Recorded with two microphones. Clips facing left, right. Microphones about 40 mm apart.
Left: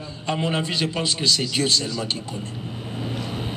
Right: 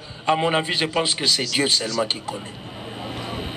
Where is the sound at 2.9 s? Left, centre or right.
Centre.